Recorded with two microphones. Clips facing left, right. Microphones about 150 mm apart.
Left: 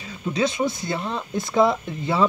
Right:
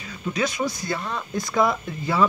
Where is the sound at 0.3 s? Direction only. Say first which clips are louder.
Left 3 dB; 25° left (ahead or behind).